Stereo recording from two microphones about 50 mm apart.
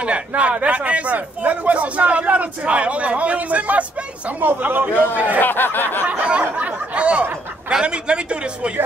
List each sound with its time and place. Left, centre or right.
0.4 s a man's voice: right
4.4 s a man's voice: right
5.4 s a sound: left
6.0 s a man's voice: right